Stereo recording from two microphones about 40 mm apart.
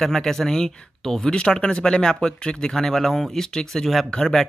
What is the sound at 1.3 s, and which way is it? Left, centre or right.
Speech, left.